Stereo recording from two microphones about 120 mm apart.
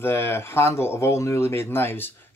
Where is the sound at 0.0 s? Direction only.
20° left (ahead or behind).